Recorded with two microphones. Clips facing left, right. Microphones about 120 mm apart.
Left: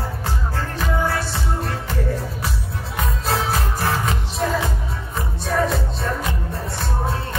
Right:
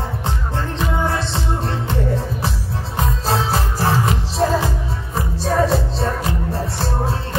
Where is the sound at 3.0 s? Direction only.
30° right (ahead or behind).